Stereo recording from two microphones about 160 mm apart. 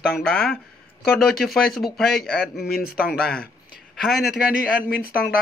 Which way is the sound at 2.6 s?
75° left (ahead or behind).